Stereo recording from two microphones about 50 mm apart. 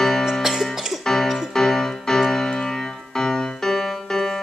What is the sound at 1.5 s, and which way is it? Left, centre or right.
Music, centre.